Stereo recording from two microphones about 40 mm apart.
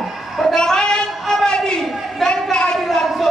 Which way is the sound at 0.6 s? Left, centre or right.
Centre.